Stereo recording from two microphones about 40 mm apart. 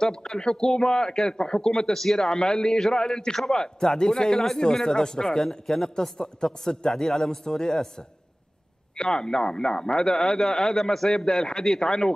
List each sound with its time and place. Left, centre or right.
0.0 s a man's voice: centre
8.9 s a man's voice: centre